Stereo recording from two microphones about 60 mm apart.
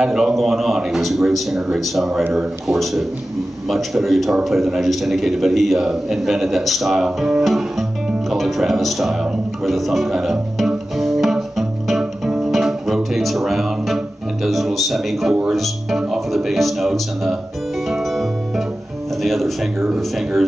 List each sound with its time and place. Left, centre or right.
0.0 s a man's voice: centre
11.0 s music: centre
15.4 s a man's voice: centre
16.0 s music: centre
19.2 s a man's voice: centre